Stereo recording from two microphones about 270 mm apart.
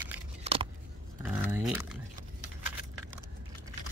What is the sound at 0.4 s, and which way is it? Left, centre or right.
Scissors, right.